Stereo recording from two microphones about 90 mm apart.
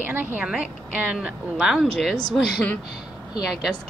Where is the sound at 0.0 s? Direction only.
20° right (ahead or behind).